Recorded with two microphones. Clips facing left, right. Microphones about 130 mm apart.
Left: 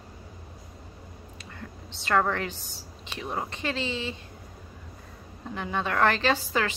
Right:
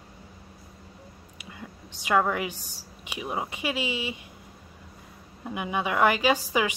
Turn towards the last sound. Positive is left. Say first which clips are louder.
# right 2 dB
turn(degrees=-10)  # may be behind; listen again after turning